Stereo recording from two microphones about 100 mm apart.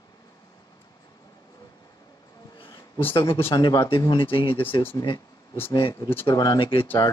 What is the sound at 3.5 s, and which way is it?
Speech, 40° left (ahead or behind).